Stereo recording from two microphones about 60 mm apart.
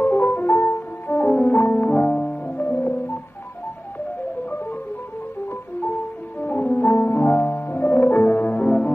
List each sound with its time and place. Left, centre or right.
0.0 s piano: left
6.4 s music: left